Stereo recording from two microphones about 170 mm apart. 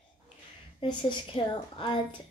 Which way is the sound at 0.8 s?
30° left (ahead or behind).